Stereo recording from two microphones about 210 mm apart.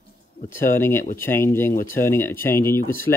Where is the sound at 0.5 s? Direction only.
10° left (ahead or behind).